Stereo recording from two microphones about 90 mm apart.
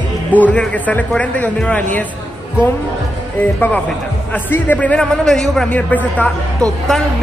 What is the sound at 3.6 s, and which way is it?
A man's voice, 15° left (ahead or behind).